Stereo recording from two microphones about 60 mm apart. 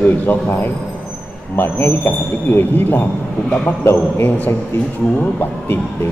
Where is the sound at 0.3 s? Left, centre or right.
Left.